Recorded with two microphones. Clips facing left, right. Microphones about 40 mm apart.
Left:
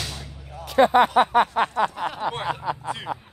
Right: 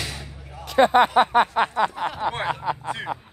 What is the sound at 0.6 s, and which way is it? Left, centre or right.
Speech, right.